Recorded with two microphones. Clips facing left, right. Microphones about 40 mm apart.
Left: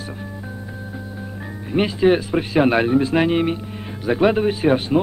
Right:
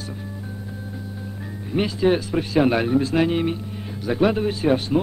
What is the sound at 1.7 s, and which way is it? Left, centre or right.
Speech, left.